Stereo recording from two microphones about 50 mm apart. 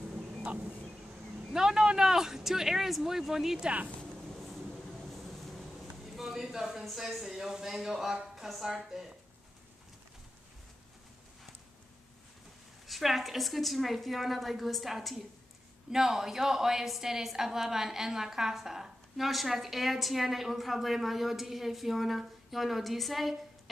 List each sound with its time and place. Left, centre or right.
1.5 s speech: centre
3.6 s speech: right
4.4 s vehicle: centre
6.1 s a woman's voice: centre
12.8 s a woman's voice: centre